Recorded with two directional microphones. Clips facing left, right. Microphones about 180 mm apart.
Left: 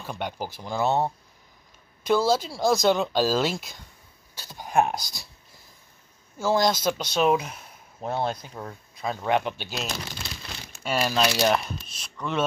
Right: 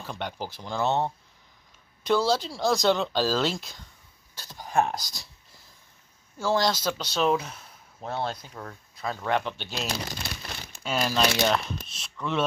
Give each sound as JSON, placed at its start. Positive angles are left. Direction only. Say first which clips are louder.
{"t": 0.0, "sound": "speech", "louder": "left 2 dB", "side_deg": 10}
{"t": 6.4, "sound": "speech", "louder": "left 2 dB", "side_deg": 15}